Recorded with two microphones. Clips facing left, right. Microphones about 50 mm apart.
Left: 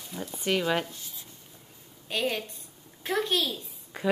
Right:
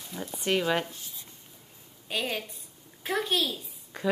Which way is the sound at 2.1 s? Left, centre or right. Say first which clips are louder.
Left 2 dB; centre.